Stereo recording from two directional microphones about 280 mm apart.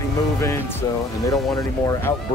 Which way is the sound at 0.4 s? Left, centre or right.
Centre.